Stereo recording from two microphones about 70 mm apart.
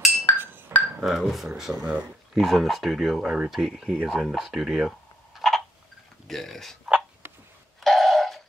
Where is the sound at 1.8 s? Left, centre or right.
Right.